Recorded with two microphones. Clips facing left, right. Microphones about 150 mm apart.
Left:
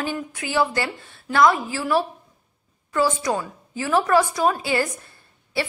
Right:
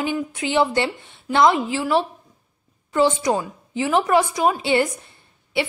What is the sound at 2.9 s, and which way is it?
A woman's voice, 20° right (ahead or behind).